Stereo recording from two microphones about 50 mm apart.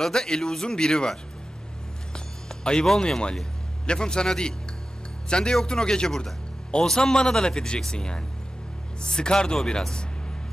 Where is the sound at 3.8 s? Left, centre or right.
Centre.